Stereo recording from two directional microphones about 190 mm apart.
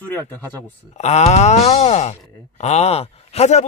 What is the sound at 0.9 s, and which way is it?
Speech, 35° left (ahead or behind).